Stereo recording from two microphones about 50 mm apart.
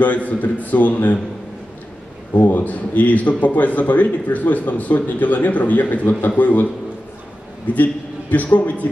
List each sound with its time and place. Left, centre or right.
0.0 s a man's voice: left
2.4 s a man's voice: left
7.7 s a man's voice: left